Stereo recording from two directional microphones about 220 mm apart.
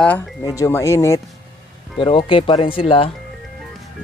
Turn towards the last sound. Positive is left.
turn(degrees=25)  # may be behind; listen again after turning